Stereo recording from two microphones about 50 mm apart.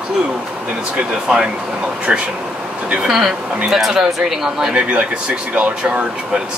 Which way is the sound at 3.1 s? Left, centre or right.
Centre.